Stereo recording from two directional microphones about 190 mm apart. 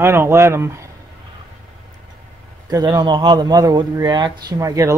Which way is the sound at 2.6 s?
20° right (ahead or behind).